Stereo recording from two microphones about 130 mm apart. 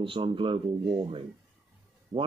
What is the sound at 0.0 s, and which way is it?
Speech, 40° right (ahead or behind).